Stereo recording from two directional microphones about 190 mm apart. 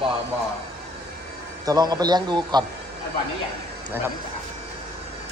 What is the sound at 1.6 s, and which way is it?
Speech, 20° right (ahead or behind).